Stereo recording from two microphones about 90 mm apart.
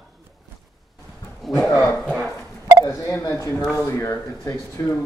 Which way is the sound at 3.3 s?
35° left (ahead or behind).